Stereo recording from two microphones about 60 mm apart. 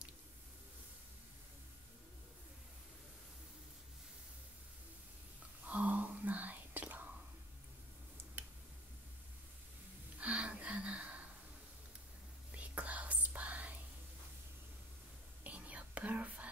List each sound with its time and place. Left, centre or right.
5.7 s whispering: right
10.1 s gasp: right
12.5 s whispering: right
15.4 s whispering: right